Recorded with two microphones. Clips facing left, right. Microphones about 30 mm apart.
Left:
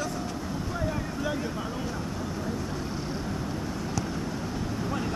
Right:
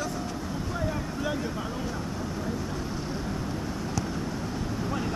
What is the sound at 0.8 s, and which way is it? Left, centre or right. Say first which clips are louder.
Boat: even; centre.